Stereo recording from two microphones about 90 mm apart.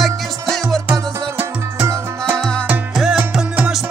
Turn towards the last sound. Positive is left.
turn(degrees=-5)  # may be behind; listen again after turning